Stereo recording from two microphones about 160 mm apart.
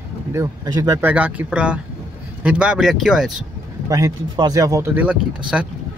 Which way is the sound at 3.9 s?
20° right (ahead or behind).